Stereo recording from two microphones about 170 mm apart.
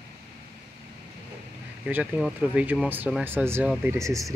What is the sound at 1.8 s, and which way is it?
Speech, 10° right (ahead or behind).